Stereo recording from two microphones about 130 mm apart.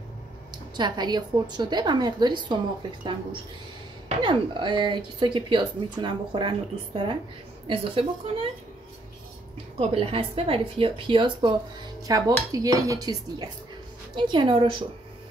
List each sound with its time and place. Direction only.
0.7 s speech: 35° right (ahead or behind)
4.2 s a woman's voice: 35° right (ahead or behind)
9.8 s a woman's voice: 50° right (ahead or behind)
12.1 s speech: 25° right (ahead or behind)